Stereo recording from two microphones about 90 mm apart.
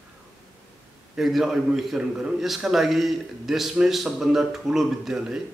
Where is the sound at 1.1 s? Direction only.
5° right (ahead or behind).